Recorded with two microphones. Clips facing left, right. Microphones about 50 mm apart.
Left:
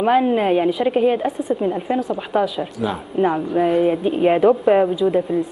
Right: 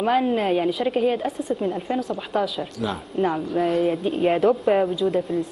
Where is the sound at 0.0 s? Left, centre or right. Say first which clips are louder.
Left 4 dB; centre.